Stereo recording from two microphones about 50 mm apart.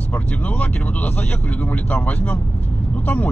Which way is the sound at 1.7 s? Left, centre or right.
Left.